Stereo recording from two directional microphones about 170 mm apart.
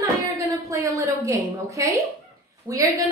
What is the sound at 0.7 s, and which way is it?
A woman's voice, 20° right (ahead or behind).